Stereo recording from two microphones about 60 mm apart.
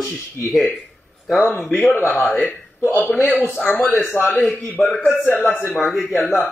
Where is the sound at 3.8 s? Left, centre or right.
Centre.